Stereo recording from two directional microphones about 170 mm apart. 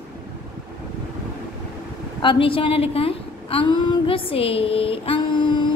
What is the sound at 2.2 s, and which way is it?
A woman's voice, 30° left (ahead or behind).